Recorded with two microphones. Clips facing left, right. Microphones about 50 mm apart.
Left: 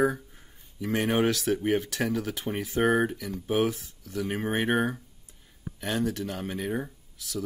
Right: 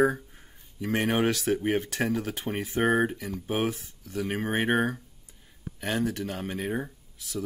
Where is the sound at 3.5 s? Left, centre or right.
Right.